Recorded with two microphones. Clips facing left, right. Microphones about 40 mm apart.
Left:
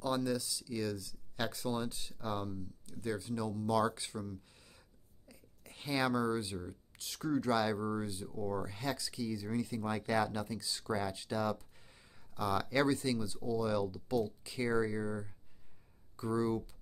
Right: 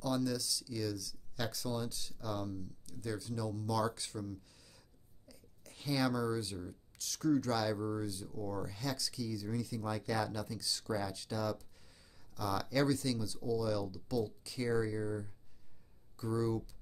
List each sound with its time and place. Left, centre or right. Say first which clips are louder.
0.0 s speech: left 1 dB; left